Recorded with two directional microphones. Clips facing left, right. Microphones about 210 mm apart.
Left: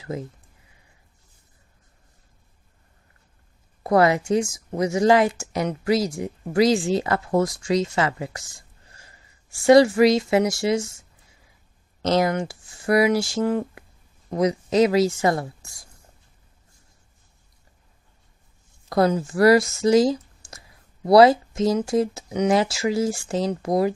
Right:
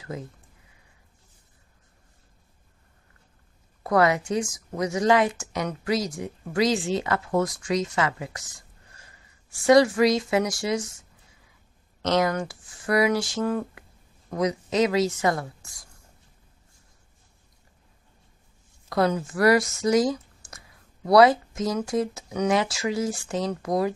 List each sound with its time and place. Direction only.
3.8 s speech: 30° left (ahead or behind)
12.0 s a woman's voice: 30° left (ahead or behind)
18.9 s speech: 35° left (ahead or behind)